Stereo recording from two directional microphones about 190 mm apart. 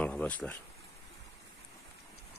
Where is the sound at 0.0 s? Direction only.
5° left (ahead or behind).